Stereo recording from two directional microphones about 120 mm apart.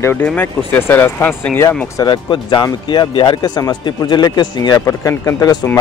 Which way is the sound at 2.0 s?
40° left (ahead or behind).